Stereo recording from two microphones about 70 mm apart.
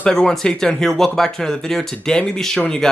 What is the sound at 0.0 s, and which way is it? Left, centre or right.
Speech, centre.